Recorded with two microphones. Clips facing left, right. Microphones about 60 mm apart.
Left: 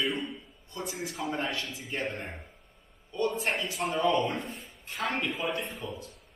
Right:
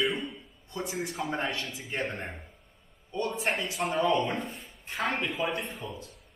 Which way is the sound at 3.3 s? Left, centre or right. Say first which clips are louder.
Right 1 dB; centre.